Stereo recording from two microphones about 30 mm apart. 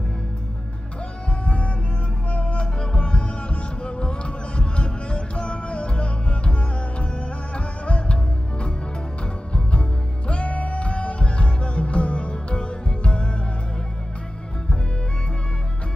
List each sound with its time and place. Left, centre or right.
1.4 s music: left
2.6 s music: left